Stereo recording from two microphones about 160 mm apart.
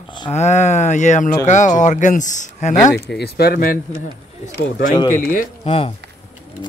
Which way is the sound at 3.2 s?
70° left (ahead or behind).